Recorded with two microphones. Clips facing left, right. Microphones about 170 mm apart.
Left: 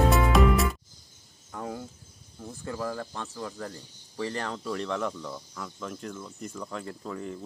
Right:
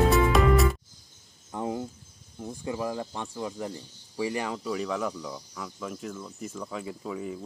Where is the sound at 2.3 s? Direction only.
15° right (ahead or behind).